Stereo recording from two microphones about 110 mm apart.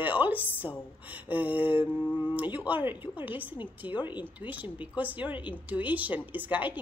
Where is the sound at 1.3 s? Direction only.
15° right (ahead or behind).